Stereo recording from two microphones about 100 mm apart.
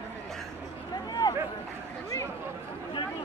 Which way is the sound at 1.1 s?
45° left (ahead or behind).